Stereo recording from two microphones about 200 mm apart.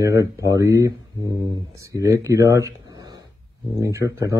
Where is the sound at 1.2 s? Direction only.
20° left (ahead or behind).